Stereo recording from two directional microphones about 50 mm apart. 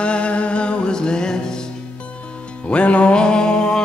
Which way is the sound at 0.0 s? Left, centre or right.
Left.